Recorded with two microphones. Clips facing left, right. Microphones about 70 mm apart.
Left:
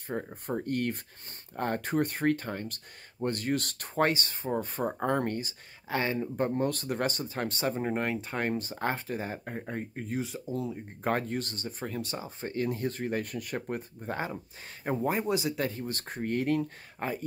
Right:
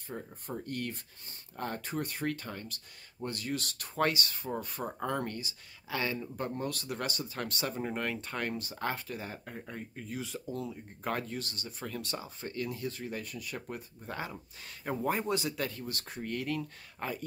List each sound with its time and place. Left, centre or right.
0.1 s speech: left
10.2 s speech: centre
11.1 s speech: left
14.9 s speech: centre; by 17.2 s left